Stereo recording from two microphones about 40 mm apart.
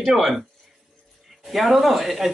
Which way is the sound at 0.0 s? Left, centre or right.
Centre.